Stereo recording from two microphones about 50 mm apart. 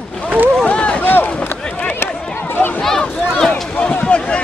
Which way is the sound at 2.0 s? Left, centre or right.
Left.